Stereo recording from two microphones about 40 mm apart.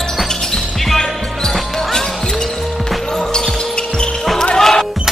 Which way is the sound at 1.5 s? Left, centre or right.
Centre.